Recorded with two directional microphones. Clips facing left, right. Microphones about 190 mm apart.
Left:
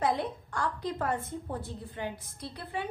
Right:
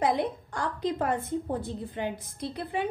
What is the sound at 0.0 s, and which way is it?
A woman's voice, 15° right (ahead or behind).